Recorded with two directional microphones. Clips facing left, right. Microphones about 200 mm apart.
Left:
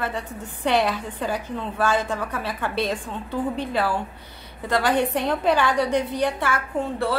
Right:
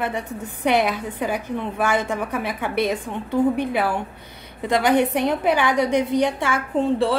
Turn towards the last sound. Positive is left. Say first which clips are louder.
# right 5 dB
turn(degrees=-25)  # may be behind; listen again after turning